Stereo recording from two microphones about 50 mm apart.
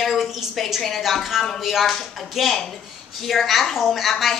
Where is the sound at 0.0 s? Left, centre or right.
Centre.